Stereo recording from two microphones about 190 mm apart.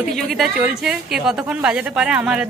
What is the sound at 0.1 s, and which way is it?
A woman's voice, centre (ahead or behind).